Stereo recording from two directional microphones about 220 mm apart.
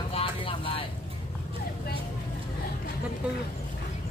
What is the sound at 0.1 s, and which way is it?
Vehicle, 25° left (ahead or behind).